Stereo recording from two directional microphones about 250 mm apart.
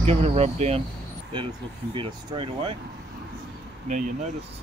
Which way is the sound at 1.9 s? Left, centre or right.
Centre.